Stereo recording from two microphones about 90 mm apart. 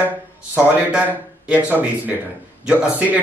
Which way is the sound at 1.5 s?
15° right (ahead or behind).